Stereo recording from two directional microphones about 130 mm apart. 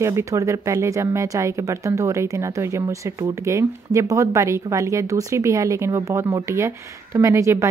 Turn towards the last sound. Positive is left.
turn(degrees=-25)  # may be behind; listen again after turning